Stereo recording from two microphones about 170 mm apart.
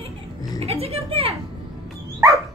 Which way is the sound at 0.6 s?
35° right (ahead or behind).